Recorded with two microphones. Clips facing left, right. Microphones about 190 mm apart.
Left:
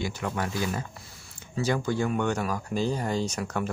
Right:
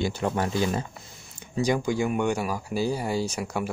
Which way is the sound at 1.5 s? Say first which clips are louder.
Right 2 dB; 15° right (ahead or behind).